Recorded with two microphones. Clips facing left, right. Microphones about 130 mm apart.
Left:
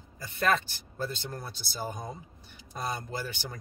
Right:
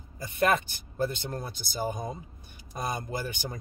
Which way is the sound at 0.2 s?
15° right (ahead or behind).